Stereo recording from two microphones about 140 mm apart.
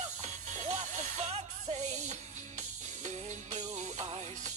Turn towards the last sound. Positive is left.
turn(degrees=-55)  # may be behind; listen again after turning